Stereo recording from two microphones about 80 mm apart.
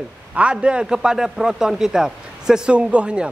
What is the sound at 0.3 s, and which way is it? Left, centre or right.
A man's voice, centre.